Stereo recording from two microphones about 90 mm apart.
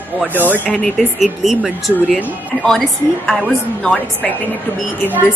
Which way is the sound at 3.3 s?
5° left (ahead or behind).